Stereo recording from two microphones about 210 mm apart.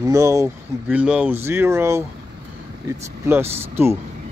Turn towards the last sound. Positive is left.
turn(degrees=-10)  # may be behind; listen again after turning